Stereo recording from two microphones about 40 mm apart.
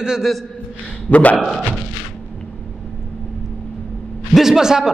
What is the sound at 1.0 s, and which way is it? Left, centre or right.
Speech, left.